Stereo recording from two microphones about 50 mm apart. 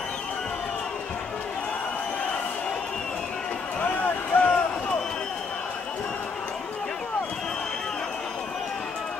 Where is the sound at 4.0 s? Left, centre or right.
Left.